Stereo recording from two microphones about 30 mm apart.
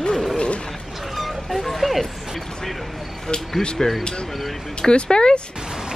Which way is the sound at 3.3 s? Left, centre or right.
Left.